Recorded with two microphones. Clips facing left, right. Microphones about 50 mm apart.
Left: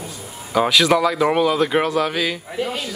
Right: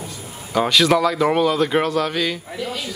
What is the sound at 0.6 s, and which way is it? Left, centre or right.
Speech, centre.